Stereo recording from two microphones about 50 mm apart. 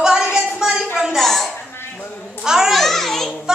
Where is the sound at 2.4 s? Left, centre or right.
Centre.